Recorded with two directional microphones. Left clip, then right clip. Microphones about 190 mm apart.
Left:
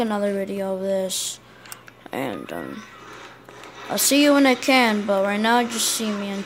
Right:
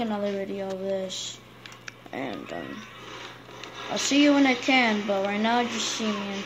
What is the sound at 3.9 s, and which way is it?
A woman's voice, 60° left (ahead or behind).